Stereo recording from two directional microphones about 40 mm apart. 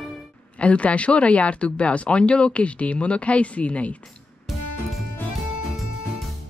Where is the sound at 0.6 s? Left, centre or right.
Left.